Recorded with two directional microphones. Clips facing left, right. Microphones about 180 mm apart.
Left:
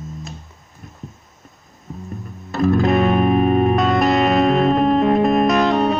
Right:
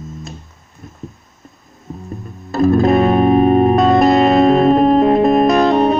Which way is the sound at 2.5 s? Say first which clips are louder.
Right 4 dB; 35° right (ahead or behind).